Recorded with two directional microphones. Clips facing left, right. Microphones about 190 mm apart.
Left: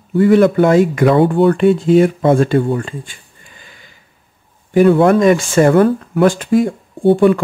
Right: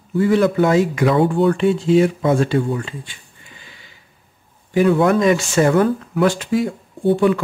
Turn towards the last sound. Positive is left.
turn(degrees=50)  # may be behind; listen again after turning